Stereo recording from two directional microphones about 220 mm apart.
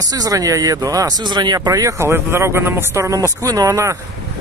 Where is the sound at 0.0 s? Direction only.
15° right (ahead or behind).